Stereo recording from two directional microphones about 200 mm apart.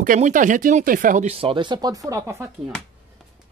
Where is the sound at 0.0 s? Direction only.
40° right (ahead or behind); by 2.5 s 15° right (ahead or behind).